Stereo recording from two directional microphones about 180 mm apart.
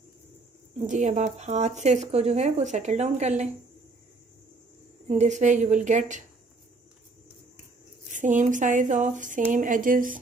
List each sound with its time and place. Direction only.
0.8 s speech: 40° right (ahead or behind)
5.0 s speech: 40° right (ahead or behind)
8.1 s speech: 45° right (ahead or behind)